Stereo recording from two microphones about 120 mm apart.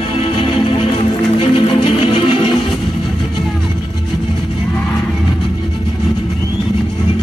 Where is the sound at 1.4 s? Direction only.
45° left (ahead or behind).